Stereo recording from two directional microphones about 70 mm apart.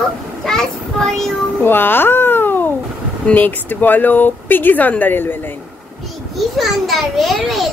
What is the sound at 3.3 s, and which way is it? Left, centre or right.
Speech, left.